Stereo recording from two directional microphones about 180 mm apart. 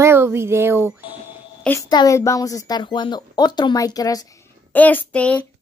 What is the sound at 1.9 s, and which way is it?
A woman's voice, 20° left (ahead or behind).